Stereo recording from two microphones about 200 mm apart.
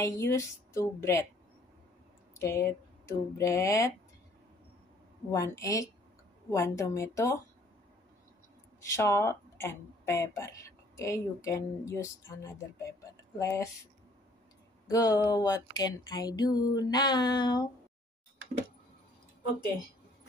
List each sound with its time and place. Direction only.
0.0 s a woman's voice: 15° left (ahead or behind)
2.3 s speech: 15° left (ahead or behind)
5.3 s a woman's voice: 15° left (ahead or behind)
8.9 s a woman's voice: 15° left (ahead or behind)
14.9 s music: 20° left (ahead or behind)